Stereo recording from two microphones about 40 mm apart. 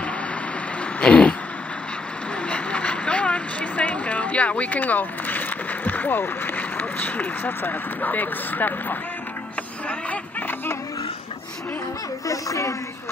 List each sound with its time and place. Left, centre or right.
1.0 s vehicle: left
2.5 s a sound: left
5.9 s speech: left